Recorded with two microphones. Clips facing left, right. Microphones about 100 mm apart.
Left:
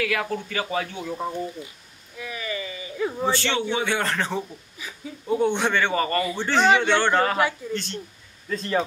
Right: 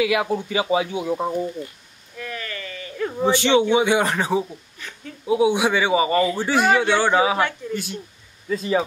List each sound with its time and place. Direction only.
0.0 s speech: 15° right (ahead or behind)
2.1 s a sound: 10° left (ahead or behind)
3.2 s speech: 15° right (ahead or behind)
4.7 s speech: 5° left (ahead or behind)
5.2 s speech: 5° right (ahead or behind)